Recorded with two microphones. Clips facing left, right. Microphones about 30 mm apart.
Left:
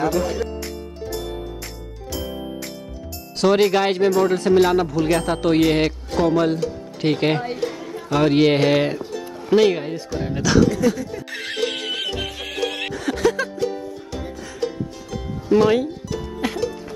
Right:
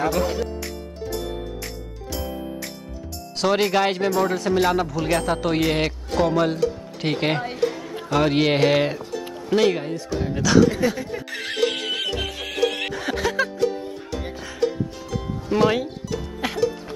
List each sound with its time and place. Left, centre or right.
0.0 s speech: centre
3.3 s speech: centre
11.0 s speech: right
11.2 s music: centre
12.9 s music: centre
13.6 s music: centre
15.4 s music: centre